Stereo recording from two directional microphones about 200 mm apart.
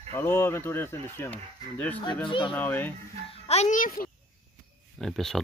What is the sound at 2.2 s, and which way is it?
Speech, 25° left (ahead or behind).